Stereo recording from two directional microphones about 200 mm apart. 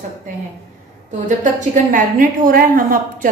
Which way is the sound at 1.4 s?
40° right (ahead or behind).